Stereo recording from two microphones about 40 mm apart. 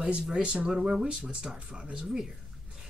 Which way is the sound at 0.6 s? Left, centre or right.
Centre.